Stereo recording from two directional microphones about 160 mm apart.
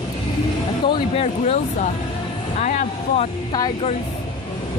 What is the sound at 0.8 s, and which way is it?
Speech, 40° left (ahead or behind).